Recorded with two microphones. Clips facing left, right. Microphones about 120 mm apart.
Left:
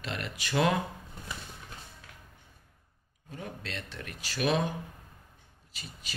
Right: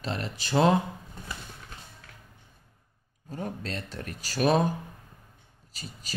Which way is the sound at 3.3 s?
40° right (ahead or behind).